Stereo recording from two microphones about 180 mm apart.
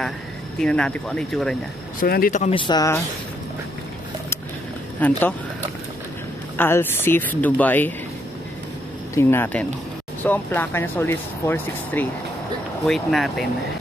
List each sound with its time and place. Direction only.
0.6 s speech: 5° left (ahead or behind)
2.0 s speech: 55° left (ahead or behind)
2.5 s speech: 25° left (ahead or behind)
5.0 s speech: 10° left (ahead or behind)
6.6 s speech: 10° left (ahead or behind)
9.1 s speech: 15° left (ahead or behind)